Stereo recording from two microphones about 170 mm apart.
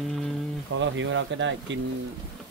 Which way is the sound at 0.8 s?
90° right.